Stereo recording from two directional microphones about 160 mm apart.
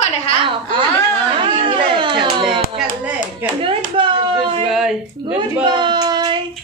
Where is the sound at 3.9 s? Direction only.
30° right (ahead or behind).